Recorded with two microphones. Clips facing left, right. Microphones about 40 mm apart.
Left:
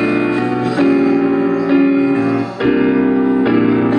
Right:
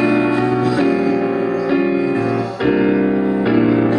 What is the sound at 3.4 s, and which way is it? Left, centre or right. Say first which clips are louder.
Music: left 1 dB; left.